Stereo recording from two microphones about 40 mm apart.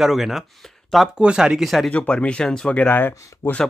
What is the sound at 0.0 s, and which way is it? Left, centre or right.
Speech, centre.